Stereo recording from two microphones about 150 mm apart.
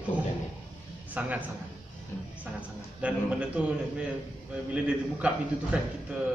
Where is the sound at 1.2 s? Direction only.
10° right (ahead or behind).